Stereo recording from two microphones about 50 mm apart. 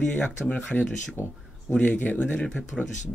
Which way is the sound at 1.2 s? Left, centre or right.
Left.